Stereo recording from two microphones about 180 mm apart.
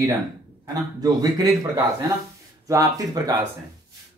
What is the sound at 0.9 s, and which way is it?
A man's voice, 20° right (ahead or behind).